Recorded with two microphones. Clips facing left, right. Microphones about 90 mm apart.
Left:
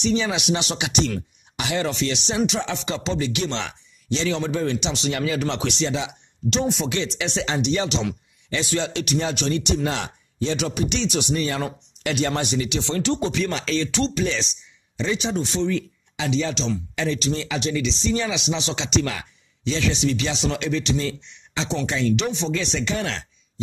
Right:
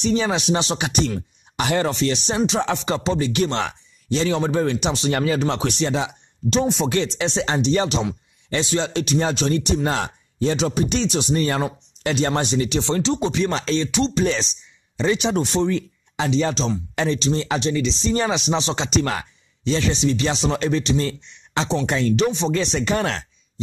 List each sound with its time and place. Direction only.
0.0 s speech: 40° right (ahead or behind)
13.0 s speech: 20° right (ahead or behind); by 14.5 s 40° right (ahead or behind)
15.0 s speech: 60° right (ahead or behind)
15.6 s speech: 40° right (ahead or behind)